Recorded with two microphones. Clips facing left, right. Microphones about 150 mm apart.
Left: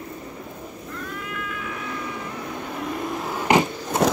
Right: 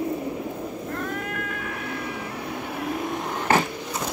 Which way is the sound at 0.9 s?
50° right (ahead or behind).